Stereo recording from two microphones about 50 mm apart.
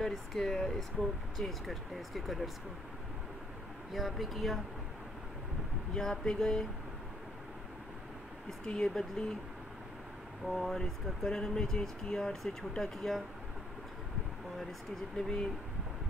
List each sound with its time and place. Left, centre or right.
0.0 s speech: centre
3.9 s speech: centre
5.9 s speech: centre
8.8 s speech: centre
10.4 s speech: centre
15.1 s speech: centre